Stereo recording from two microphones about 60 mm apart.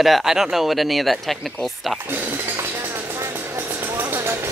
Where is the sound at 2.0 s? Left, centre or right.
Right.